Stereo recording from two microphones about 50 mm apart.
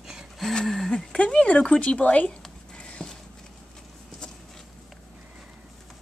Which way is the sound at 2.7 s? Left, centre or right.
Centre.